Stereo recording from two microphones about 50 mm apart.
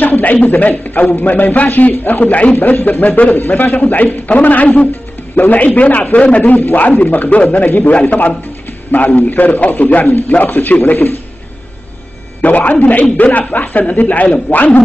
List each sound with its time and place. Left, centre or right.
0.0 s speech: left
8.0 s a man's voice: left
12.4 s speech: left